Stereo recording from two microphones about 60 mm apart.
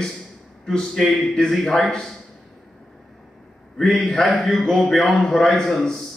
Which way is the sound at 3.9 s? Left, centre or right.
Left.